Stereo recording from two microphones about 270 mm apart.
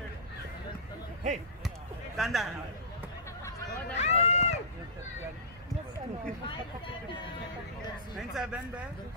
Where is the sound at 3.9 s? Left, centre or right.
Left.